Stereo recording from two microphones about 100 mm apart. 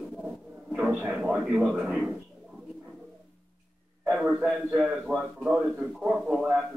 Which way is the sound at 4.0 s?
5° right (ahead or behind).